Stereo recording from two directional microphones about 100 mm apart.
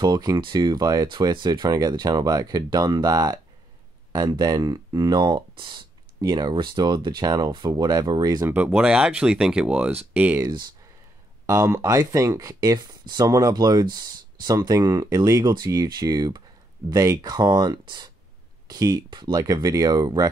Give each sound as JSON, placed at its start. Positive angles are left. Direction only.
{"t": 0.0, "sound": "speech", "side_deg": -40}
{"t": 1.0, "sound": "speech", "side_deg": -50}
{"t": 8.5, "sound": "speech", "side_deg": -15}
{"t": 11.4, "sound": "speech", "side_deg": -30}
{"t": 19.0, "sound": "speech", "side_deg": -50}
{"t": 19.3, "sound": "speech", "side_deg": -35}